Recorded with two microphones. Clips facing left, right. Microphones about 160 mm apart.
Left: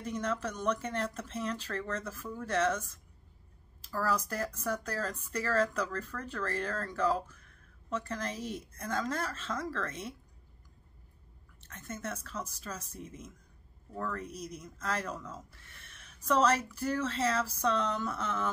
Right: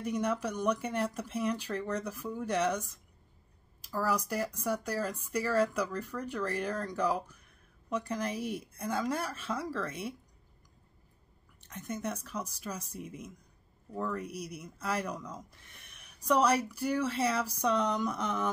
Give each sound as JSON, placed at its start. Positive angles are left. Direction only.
{"t": 0.0, "sound": "speech", "side_deg": -10}
{"t": 11.6, "sound": "speech", "side_deg": -15}